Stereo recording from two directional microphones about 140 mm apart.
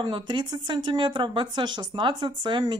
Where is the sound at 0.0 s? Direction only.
35° right (ahead or behind).